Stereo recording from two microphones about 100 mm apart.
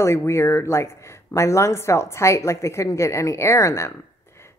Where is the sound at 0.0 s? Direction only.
30° left (ahead or behind).